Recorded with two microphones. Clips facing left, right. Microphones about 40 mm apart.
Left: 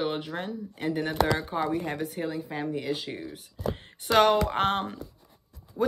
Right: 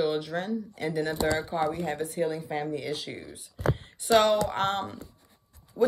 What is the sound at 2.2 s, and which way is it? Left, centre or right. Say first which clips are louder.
Speech: right 1 dB; centre.